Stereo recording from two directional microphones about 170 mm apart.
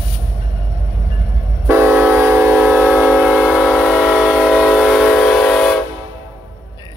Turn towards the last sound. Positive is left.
turn(degrees=0)  # may be behind; listen again after turning